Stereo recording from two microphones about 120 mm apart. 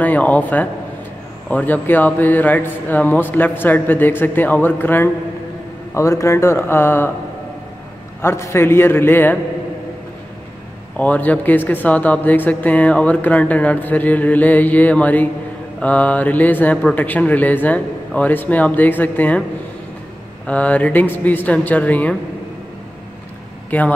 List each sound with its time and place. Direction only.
0.0 s a man's voice: 15° left (ahead or behind)
8.2 s a man's voice: 20° left (ahead or behind)
11.0 s speech: 15° left (ahead or behind)
20.4 s speech: 10° left (ahead or behind)
23.7 s speech: 15° left (ahead or behind)